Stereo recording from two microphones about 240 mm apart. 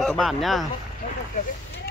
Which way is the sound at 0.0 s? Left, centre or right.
Centre.